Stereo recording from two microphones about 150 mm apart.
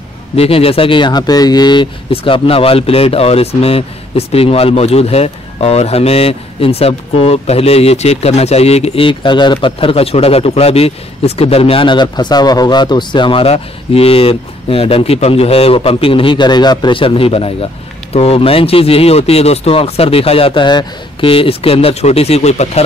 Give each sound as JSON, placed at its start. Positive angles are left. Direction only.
{"t": 0.4, "sound": "speech", "side_deg": 40}